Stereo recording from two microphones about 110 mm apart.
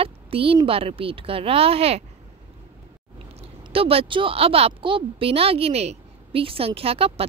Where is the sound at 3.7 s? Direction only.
60° right (ahead or behind).